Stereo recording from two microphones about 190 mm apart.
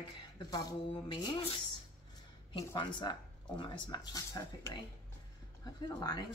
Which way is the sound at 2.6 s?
25° left (ahead or behind).